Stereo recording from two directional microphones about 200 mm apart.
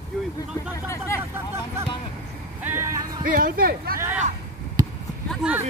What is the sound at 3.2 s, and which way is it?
Speech, 45° right (ahead or behind).